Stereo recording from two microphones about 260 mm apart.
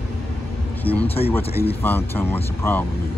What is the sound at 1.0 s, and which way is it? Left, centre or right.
Speech, left.